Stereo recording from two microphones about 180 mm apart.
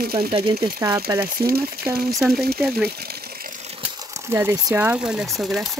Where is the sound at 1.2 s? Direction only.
60° right (ahead or behind).